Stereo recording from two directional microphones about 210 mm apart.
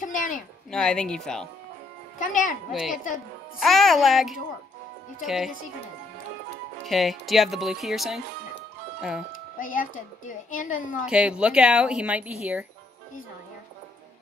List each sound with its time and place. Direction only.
0.0 s a sound: 40° left (ahead or behind)
0.7 s speech: 5° left (ahead or behind)
2.1 s a woman's voice: 40° left (ahead or behind)
2.7 s speech: centre (ahead or behind)
6.9 s speech: centre (ahead or behind)
9.6 s a woman's voice: 40° left (ahead or behind)
11.1 s speech: 5° right (ahead or behind)